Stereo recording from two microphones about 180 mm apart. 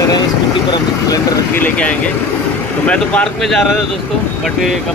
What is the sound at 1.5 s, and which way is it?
Speech, 10° left (ahead or behind).